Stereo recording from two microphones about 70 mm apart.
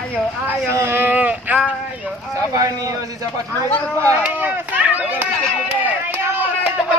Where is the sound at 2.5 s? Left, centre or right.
Right.